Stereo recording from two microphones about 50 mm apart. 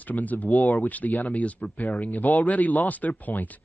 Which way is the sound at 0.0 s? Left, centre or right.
Left.